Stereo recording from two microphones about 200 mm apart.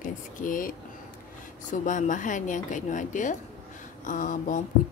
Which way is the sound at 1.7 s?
40° left (ahead or behind).